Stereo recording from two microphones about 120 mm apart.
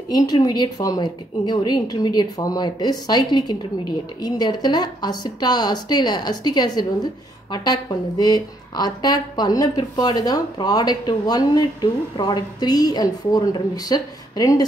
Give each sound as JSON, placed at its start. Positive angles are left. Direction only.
{"t": 0.1, "sound": "speech", "side_deg": 35}